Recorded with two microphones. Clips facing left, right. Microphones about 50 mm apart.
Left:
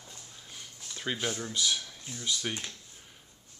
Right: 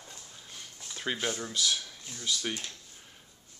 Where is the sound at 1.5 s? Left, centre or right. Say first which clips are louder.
Left 1 dB; centre.